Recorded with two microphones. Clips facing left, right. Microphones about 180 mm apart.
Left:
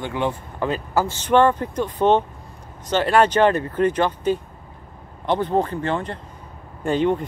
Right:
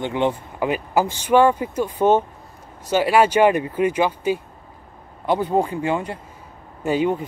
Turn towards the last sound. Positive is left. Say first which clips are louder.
# even
turn(degrees=-5)  # may be behind; listen again after turning